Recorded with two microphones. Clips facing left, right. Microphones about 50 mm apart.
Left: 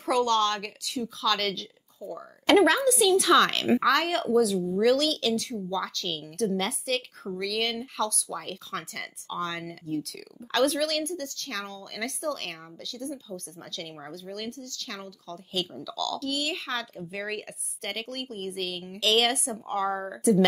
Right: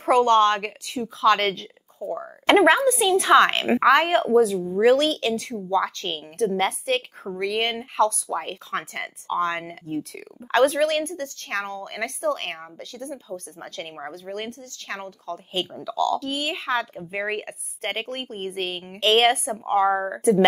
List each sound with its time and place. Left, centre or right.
0.0 s a woman's voice: right